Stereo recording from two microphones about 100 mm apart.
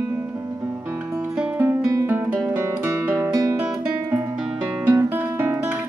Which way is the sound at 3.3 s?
35° right (ahead or behind).